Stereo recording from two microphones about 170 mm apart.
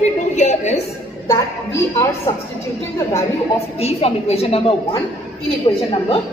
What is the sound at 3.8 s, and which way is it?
A woman's voice, 35° left (ahead or behind).